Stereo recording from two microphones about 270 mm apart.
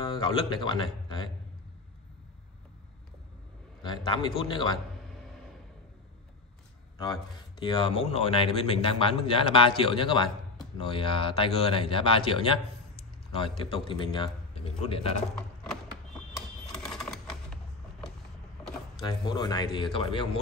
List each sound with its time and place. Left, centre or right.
0.0 s a man's voice: centre
3.8 s speech: centre
7.6 s a man's voice: centre
15.3 s a sound: centre
16.8 s a sound: centre
18.9 s speech: centre